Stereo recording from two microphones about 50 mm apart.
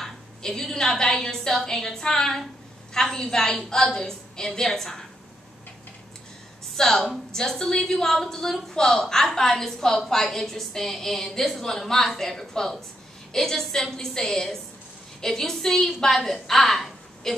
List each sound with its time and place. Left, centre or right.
0.0 s a woman's voice: centre
6.8 s a woman's voice: centre